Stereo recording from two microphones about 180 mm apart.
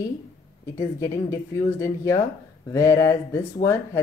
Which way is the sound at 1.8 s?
15° left (ahead or behind).